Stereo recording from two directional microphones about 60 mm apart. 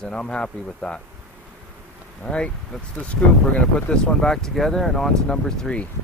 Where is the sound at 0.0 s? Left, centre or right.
Centre.